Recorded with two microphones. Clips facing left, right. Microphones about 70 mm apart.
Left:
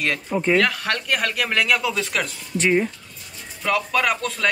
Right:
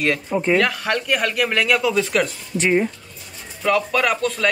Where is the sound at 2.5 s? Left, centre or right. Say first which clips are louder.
Right 1 dB; centre.